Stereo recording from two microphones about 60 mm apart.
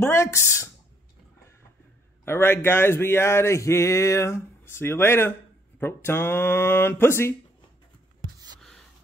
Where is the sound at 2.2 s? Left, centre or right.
Left.